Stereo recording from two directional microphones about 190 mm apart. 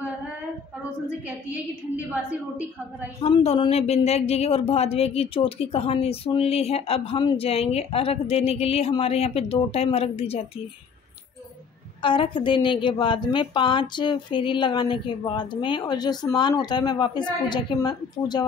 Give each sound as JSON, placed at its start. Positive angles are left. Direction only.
{"t": 3.2, "sound": "speech", "side_deg": 30}
{"t": 12.0, "sound": "a woman's voice", "side_deg": 25}